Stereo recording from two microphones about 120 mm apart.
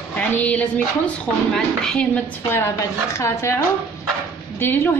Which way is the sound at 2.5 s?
20° left (ahead or behind).